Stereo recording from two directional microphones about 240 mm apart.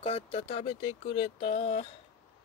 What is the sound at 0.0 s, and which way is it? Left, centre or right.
Speech, left.